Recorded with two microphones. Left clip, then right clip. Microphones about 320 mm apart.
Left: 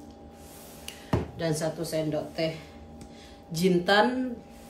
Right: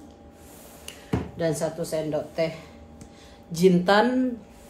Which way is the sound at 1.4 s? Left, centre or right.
Centre.